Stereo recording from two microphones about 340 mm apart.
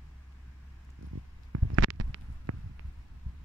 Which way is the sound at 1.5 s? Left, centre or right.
Right.